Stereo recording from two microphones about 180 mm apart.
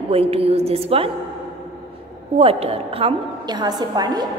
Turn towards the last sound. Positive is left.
turn(degrees=-20)  # may be behind; listen again after turning